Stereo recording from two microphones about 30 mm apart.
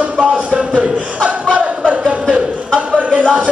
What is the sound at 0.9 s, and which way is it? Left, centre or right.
Chuckle, right.